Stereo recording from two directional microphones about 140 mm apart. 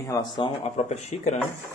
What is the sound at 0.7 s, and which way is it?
Speech, 50° left (ahead or behind).